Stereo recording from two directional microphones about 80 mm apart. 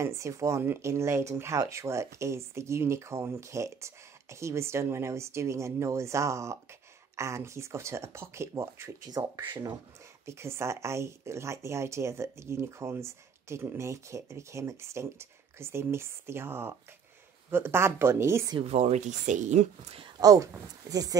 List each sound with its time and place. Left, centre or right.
0.0 s speech: right
9.0 s speech: right
10.2 s speech: right
20.2 s speech: right